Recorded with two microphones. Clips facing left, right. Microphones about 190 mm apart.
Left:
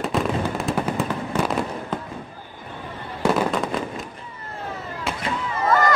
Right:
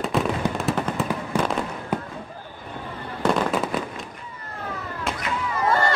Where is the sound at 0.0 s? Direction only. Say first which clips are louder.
Even; centre (ahead or behind).